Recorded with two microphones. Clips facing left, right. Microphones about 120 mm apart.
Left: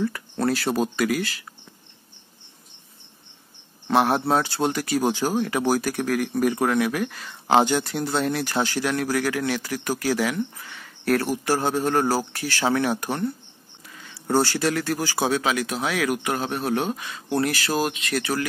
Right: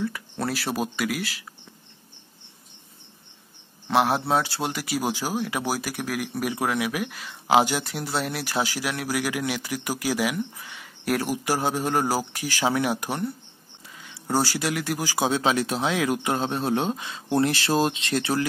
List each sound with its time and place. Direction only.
0.0 s speech: centre (ahead or behind)
3.8 s speech: centre (ahead or behind); by 18.4 s 25° right (ahead or behind)